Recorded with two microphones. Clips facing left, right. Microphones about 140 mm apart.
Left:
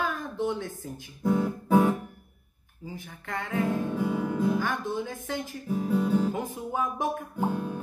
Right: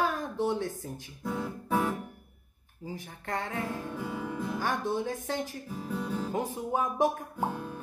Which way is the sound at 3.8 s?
Centre (ahead or behind).